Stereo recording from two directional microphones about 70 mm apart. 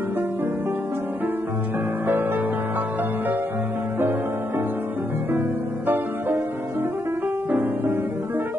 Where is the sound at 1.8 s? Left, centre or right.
Right.